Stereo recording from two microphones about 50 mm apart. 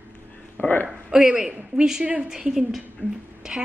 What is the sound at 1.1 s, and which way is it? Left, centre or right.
A woman's voice, centre.